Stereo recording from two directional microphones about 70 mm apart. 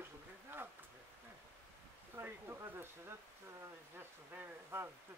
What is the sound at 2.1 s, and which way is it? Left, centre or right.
Speech, right.